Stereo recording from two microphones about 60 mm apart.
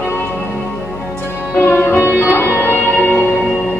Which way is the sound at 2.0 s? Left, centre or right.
Right.